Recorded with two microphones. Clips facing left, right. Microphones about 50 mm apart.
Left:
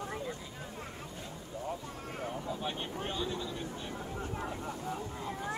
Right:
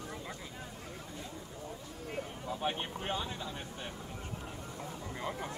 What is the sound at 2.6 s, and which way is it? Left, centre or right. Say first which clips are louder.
Speech: right 1 dB; right.